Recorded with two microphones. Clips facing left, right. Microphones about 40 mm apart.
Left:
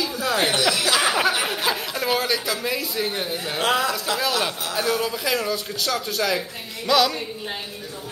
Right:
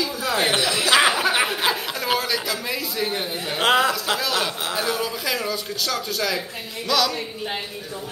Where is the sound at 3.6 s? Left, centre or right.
Right.